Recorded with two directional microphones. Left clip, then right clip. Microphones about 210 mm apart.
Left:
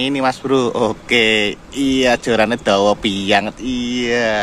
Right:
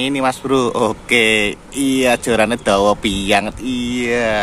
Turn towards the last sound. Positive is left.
turn(degrees=0)  # may be behind; listen again after turning